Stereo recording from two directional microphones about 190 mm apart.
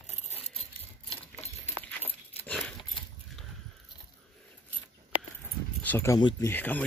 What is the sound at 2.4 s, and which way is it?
Dog, 5° left (ahead or behind).